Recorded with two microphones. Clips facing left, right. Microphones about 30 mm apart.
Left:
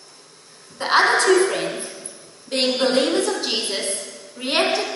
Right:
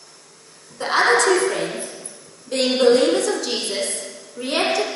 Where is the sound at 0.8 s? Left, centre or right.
Left.